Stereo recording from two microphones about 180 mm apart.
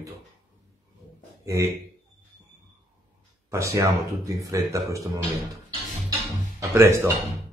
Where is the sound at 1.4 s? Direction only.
15° right (ahead or behind).